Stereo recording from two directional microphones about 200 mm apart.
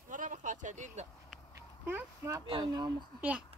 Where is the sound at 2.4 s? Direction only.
25° right (ahead or behind).